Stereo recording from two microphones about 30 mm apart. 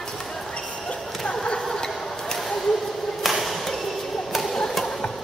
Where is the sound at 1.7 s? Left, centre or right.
Left.